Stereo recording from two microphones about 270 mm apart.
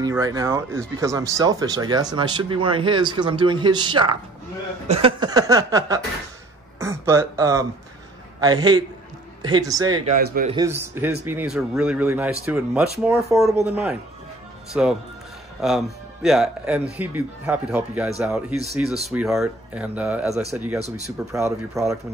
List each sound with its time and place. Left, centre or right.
0.0 s speech: centre
10.0 s a man's voice: right
10.5 s speech: centre